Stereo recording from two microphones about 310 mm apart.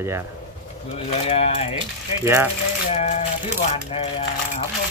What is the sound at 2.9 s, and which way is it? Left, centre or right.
Speech, centre.